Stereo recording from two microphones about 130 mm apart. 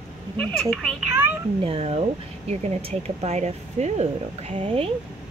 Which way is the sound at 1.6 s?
50° right (ahead or behind).